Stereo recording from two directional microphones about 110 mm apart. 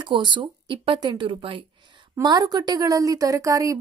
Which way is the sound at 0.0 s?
45° right (ahead or behind).